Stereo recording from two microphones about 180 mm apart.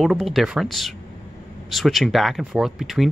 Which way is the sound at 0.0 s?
Centre (ahead or behind).